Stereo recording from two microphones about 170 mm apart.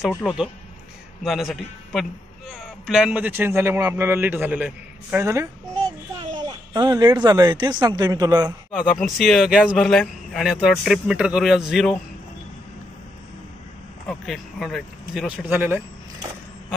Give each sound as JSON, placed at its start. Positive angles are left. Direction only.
{"t": 0.1, "sound": "a man's voice", "side_deg": 0}
{"t": 6.7, "sound": "speech", "side_deg": -25}
{"t": 9.0, "sound": "speech", "side_deg": 0}
{"t": 14.0, "sound": "speech", "side_deg": 0}